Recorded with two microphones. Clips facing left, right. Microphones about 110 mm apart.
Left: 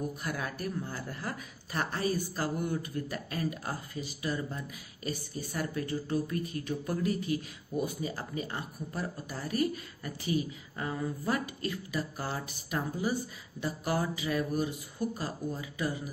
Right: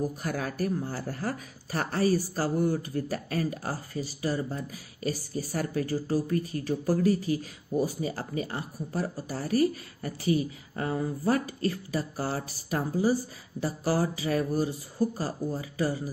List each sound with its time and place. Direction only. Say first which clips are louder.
0.2 s speech: right 5 dB; 40° right (ahead or behind)